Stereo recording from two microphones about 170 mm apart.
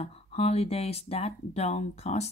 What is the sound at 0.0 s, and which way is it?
A woman's voice, 35° left (ahead or behind).